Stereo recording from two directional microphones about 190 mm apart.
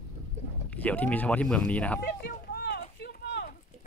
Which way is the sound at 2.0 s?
55° left (ahead or behind).